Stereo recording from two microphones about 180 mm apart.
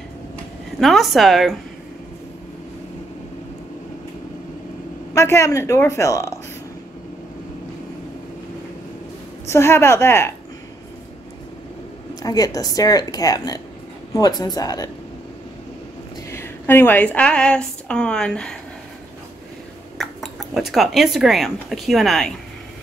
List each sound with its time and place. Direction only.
0.7 s a woman's voice: centre (ahead or behind)
5.1 s a woman's voice: 15° left (ahead or behind)
9.5 s a woman's voice: 15° left (ahead or behind)
12.2 s a woman's voice: 20° left (ahead or behind)
16.3 s a woman's voice: 15° left (ahead or behind)
20.0 s speech: centre (ahead or behind)